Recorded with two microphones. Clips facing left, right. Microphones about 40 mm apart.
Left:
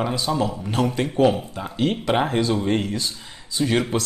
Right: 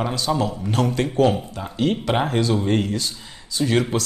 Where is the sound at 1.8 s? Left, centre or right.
Left.